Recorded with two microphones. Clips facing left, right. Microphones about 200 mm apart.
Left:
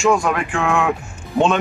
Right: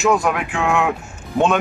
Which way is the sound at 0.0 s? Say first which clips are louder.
Left 1 dB; 5° right (ahead or behind).